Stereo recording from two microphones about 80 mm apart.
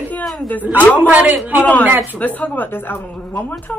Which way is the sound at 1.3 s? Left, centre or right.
Right.